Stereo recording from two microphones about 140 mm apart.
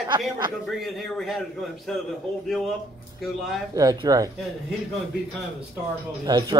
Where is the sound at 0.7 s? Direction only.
Centre (ahead or behind).